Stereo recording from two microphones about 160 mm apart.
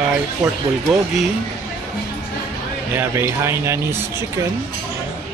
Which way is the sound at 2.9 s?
15° right (ahead or behind).